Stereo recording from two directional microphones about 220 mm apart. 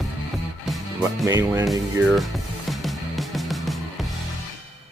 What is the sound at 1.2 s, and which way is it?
Speech, 15° right (ahead or behind).